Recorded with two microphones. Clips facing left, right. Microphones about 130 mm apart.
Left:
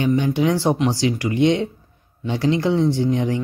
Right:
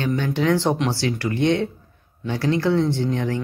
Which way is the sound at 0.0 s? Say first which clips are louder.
Left 3 dB; 15° left (ahead or behind).